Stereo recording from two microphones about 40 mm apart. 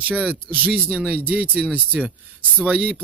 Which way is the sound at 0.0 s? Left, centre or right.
Right.